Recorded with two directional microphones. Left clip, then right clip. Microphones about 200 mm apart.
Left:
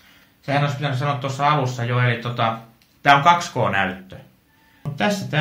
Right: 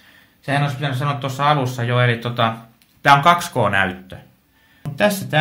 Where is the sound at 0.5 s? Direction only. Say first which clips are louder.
Right 1 dB; 40° right (ahead or behind).